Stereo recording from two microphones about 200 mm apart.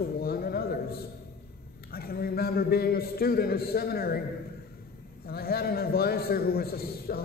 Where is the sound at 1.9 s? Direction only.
50° left (ahead or behind).